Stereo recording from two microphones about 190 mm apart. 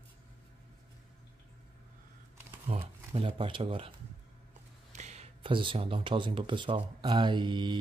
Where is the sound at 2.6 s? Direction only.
30° right (ahead or behind).